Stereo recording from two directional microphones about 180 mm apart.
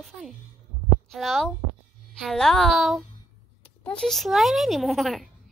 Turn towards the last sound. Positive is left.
turn(degrees=0)  # may be behind; listen again after turning